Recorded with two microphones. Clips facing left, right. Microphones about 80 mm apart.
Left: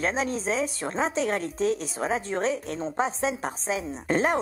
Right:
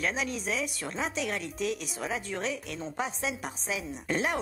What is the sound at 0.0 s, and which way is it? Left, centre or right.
A woman's voice, left.